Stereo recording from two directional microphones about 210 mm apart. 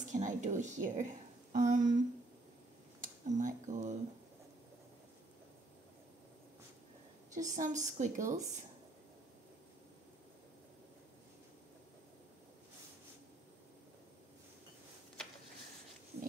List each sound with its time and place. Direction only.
0.1 s a woman's voice: 35° right (ahead or behind)
7.3 s a woman's voice: 35° right (ahead or behind)